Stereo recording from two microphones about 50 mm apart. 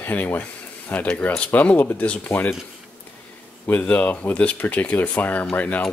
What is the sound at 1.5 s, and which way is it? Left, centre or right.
Speech, left.